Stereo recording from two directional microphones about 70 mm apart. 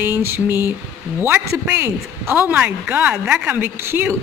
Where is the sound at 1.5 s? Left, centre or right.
Right.